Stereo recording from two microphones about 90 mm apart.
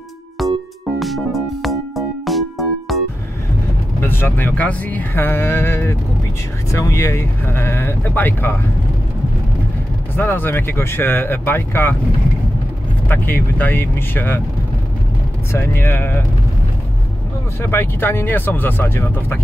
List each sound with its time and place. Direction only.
0.4 s music: centre (ahead or behind)
4.0 s speech: 25° left (ahead or behind)
10.1 s speech: 25° left (ahead or behind)
13.1 s speech: 20° left (ahead or behind)
15.5 s speech: 25° left (ahead or behind)
17.6 s speech: 25° left (ahead or behind)